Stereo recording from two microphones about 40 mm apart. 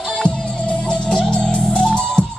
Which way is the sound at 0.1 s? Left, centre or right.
Left.